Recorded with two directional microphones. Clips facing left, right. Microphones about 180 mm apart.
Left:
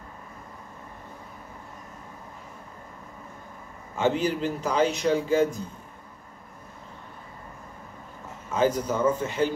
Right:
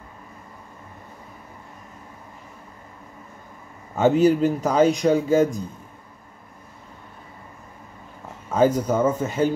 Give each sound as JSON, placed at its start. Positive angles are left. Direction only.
{"t": 3.9, "sound": "speech", "side_deg": -40}
{"t": 8.5, "sound": "speech", "side_deg": -50}